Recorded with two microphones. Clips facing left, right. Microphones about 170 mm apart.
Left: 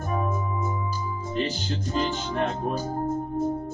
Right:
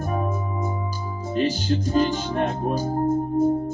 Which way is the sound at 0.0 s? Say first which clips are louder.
Right 2 dB; 35° right (ahead or behind).